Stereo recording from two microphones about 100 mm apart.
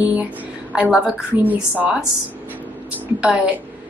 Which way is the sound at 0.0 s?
15° right (ahead or behind).